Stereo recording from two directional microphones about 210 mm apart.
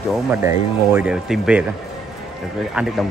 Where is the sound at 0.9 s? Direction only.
5° right (ahead or behind).